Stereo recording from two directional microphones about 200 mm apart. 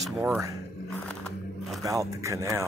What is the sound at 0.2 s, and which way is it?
Speech, 15° right (ahead or behind).